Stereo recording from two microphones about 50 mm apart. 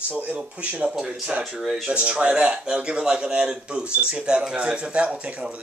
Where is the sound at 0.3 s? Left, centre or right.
Right.